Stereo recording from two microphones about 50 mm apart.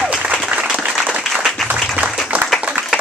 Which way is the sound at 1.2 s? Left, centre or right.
Centre.